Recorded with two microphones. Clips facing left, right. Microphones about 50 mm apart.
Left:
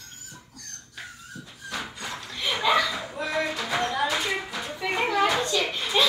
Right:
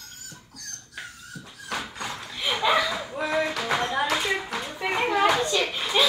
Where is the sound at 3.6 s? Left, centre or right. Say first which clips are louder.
Right 1 dB; right.